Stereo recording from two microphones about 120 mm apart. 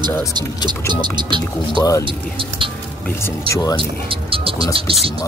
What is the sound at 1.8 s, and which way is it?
Speech, 30° left (ahead or behind).